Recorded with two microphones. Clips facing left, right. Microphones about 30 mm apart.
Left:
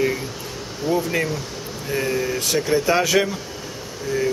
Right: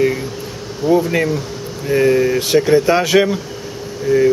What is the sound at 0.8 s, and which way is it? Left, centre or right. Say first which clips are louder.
Speech: right 7 dB; centre.